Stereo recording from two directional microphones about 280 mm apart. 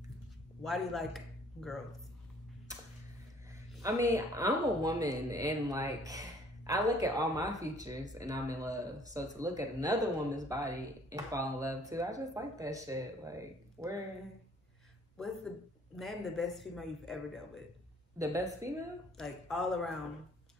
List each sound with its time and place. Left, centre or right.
0.6 s speech: centre
3.8 s a man's voice: centre
15.1 s a man's voice: centre
18.1 s speech: centre
19.1 s a man's voice: centre